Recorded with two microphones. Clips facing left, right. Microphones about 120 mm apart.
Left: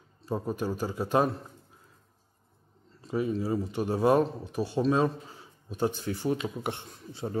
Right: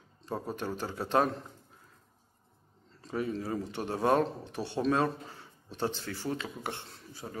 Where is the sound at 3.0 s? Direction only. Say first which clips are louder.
Left 4 dB; 10° left (ahead or behind).